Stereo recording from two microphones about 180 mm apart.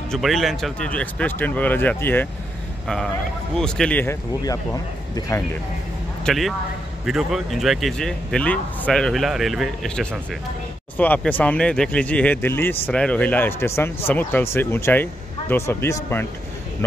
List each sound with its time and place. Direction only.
0.1 s speech: centre (ahead or behind)
3.5 s speech: 5° left (ahead or behind)
6.2 s a man's voice: centre (ahead or behind)